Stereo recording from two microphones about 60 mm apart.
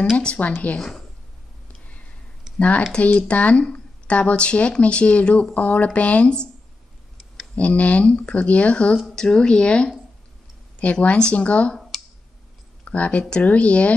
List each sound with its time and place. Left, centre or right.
0.4 s speech: left
0.7 s a woman's voice: centre
1.7 s a sound: left
2.6 s speech: left
7.5 s speech: left
8.9 s speech: centre
12.8 s speech: left